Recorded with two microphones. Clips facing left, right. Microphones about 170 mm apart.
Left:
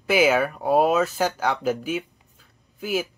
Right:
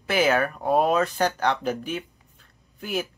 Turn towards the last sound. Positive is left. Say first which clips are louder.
# left 3 dB
turn(degrees=5)  # may be behind; listen again after turning